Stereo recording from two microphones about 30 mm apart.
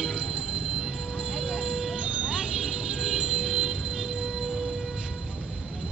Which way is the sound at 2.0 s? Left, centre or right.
Right.